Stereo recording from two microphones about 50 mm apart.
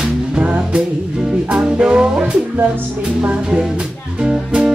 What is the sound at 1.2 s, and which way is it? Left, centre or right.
Music, centre.